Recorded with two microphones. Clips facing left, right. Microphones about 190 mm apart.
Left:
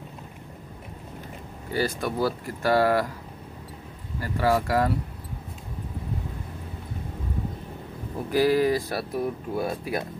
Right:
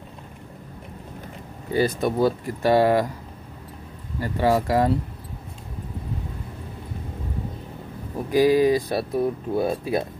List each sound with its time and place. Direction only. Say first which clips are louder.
1.7 s speech: right 5 dB; 20° right (ahead or behind)
4.2 s speech: right 3 dB; 25° right (ahead or behind)
8.3 s speech: right 4 dB; 15° right (ahead or behind)